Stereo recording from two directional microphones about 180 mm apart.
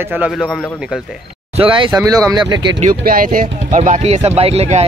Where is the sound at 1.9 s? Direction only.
15° right (ahead or behind).